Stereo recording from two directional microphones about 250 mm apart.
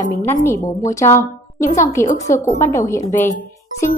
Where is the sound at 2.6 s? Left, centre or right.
Centre.